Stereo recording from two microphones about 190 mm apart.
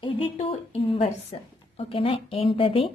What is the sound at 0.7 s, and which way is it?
A woman's voice, 30° left (ahead or behind).